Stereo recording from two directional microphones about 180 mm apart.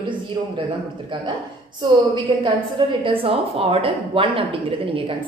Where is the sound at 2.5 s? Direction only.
30° right (ahead or behind).